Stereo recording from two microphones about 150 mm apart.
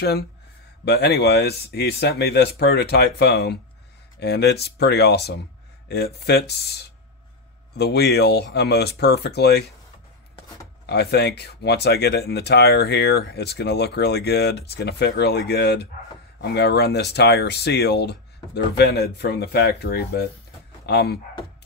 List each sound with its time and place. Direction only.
0.0 s speech: 90° left
10.9 s speech: 90° left